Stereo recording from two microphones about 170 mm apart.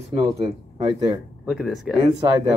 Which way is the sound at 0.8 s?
25° right (ahead or behind).